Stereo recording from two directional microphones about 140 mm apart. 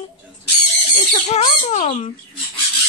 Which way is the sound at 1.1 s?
55° left (ahead or behind).